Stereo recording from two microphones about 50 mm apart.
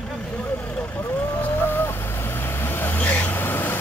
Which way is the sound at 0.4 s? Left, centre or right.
Left.